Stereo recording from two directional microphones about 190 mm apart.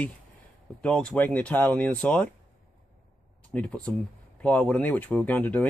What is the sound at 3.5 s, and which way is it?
Speech, 5° left (ahead or behind).